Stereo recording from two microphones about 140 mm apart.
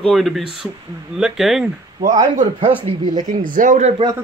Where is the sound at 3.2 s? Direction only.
70° right (ahead or behind).